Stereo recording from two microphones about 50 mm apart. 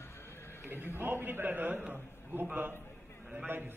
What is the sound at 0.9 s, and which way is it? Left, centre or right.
A man's voice, right.